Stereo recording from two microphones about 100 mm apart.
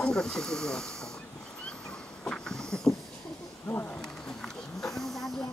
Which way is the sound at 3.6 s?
20° left (ahead or behind).